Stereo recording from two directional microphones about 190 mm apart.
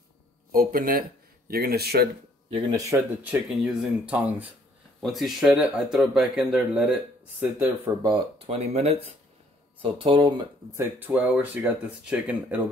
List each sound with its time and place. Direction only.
0.5 s speech: 50° right (ahead or behind)
2.7 s speech: 15° right (ahead or behind)
3.4 s speech: 5° right (ahead or behind); by 10.4 s 25° right (ahead or behind)
10.8 s speech: 10° right (ahead or behind)